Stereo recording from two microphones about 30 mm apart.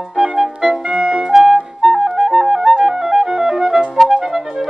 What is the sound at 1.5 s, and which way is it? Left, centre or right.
Clarinet, centre.